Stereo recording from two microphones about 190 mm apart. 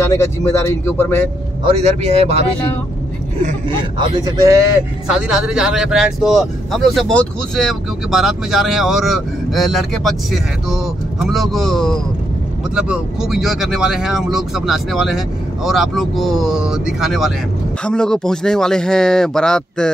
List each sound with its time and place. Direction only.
0.1 s speech: 15° left (ahead or behind)
1.6 s speech: 35° right (ahead or behind)
4.2 s a man's voice: 15° right (ahead or behind)
5.0 s speech: 5° right (ahead or behind)